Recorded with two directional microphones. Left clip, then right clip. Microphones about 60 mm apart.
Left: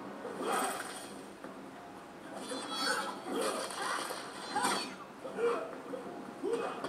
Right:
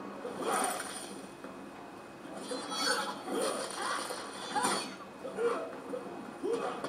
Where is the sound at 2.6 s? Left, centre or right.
Right.